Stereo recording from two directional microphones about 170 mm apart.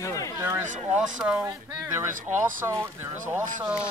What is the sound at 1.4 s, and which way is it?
Speech, 20° right (ahead or behind).